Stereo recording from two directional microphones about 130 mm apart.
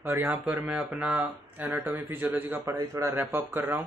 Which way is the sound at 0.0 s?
15° right (ahead or behind).